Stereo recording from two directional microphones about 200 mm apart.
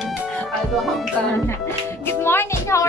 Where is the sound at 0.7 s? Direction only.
Centre (ahead or behind).